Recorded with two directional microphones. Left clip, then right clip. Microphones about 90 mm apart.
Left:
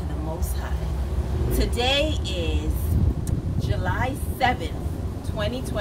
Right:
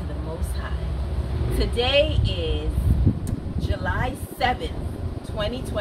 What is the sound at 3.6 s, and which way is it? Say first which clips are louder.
Speech: even; 15° right (ahead or behind).